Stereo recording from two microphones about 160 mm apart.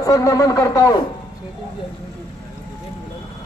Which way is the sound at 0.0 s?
20° left (ahead or behind).